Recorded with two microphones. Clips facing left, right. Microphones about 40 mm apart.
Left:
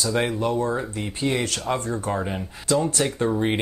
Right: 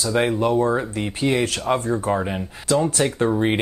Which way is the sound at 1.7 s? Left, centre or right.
Centre.